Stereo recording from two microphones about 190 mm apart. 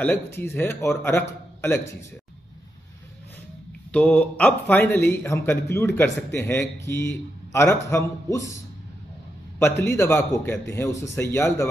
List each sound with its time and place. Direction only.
0.4 s a man's voice: 15° left (ahead or behind)
3.9 s a man's voice: 5° left (ahead or behind)